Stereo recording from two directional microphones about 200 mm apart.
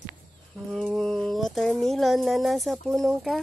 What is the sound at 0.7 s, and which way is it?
Speech, centre (ahead or behind).